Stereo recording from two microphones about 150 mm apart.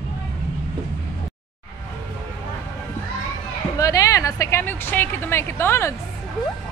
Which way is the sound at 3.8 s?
25° left (ahead or behind).